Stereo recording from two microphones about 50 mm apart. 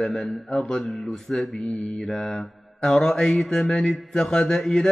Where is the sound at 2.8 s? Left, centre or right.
Centre.